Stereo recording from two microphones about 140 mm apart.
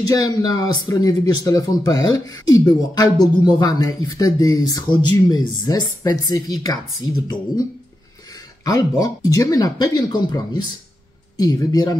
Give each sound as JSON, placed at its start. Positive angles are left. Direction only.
{"t": 0.1, "sound": "speech", "side_deg": 25}